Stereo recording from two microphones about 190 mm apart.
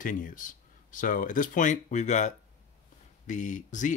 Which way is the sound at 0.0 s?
45° left (ahead or behind).